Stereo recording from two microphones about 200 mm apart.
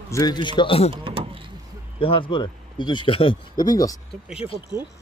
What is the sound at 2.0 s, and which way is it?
Speech, 25° left (ahead or behind).